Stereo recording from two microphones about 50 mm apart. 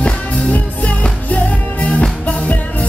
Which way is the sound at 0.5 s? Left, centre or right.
Left.